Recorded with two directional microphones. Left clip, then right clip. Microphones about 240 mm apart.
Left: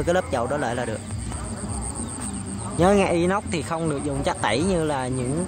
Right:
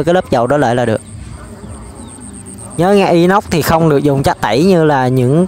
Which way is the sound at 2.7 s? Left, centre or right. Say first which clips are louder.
Right 9 dB; right.